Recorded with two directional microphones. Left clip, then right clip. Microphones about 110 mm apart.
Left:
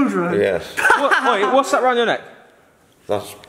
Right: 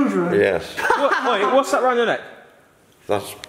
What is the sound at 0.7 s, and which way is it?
Speech, 45° left (ahead or behind).